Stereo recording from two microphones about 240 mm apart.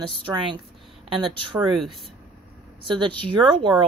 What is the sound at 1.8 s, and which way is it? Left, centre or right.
Speech, centre.